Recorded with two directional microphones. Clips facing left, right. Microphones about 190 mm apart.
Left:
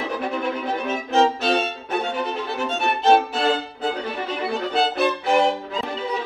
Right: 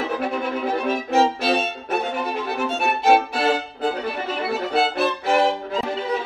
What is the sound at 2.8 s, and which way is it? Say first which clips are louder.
Violin: left 1 dB; 10° right (ahead or behind).